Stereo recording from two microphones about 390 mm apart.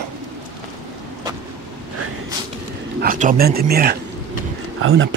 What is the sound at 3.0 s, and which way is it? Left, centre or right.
Speech, right.